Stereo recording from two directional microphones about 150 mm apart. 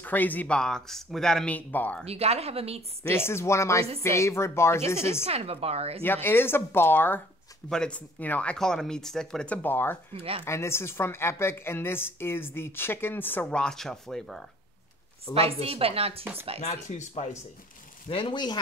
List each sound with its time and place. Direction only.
0.0 s a woman's voice: 10° left (ahead or behind)
2.0 s speech: 45° right (ahead or behind)
3.0 s a woman's voice: 15° left (ahead or behind)
5.2 s speech: 40° right (ahead or behind)
6.0 s a woman's voice: 15° left (ahead or behind)
10.1 s speech: 40° right (ahead or behind)
10.4 s a woman's voice: 15° left (ahead or behind); by 14.4 s centre (ahead or behind)
15.3 s speech: 40° right (ahead or behind)
16.6 s speech: 50° left (ahead or behind)
18.0 s speech: 35° left (ahead or behind)